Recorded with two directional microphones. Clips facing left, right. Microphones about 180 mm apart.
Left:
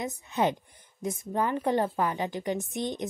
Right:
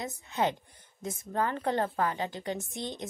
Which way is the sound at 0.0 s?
15° left (ahead or behind).